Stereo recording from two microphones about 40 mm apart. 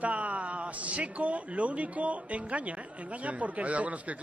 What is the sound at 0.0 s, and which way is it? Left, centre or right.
Speech, right.